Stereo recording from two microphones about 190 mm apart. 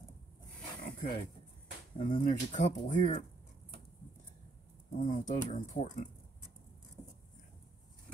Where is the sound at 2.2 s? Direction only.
40° left (ahead or behind).